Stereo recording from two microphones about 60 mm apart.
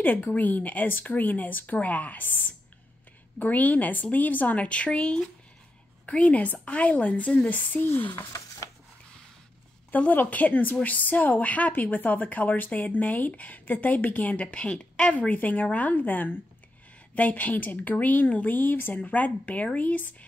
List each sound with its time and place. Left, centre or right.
0.0 s a woman's voice: left
9.8 s a woman's voice: left